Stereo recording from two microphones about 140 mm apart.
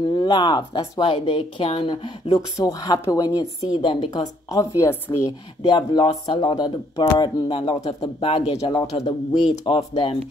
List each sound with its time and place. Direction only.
0.0 s speech: 35° left (ahead or behind); by 5.3 s 20° left (ahead or behind)
5.6 s speech: 35° left (ahead or behind)